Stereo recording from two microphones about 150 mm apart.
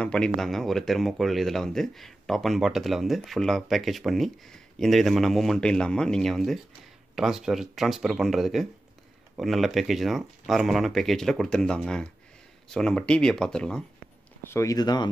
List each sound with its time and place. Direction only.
0.0 s speech: 5° left (ahead or behind)
14.4 s speech: 20° left (ahead or behind)